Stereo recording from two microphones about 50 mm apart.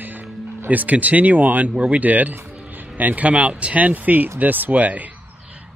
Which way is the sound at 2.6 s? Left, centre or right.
Right.